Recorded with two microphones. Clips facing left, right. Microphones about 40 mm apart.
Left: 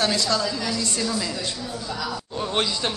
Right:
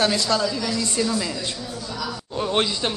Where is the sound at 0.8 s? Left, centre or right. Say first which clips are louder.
Right 3 dB; centre.